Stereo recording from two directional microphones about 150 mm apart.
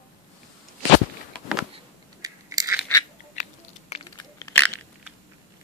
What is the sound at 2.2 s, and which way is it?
Crushing, 25° right (ahead or behind).